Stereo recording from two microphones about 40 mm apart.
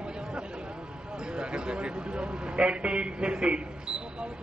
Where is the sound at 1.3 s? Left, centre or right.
Right.